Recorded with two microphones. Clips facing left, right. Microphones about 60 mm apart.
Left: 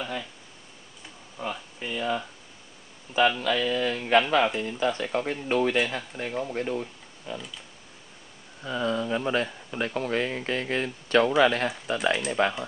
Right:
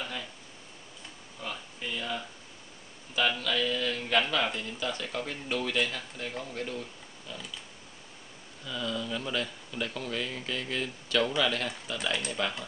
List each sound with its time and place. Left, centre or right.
1.4 s speech: centre
8.6 s speech: left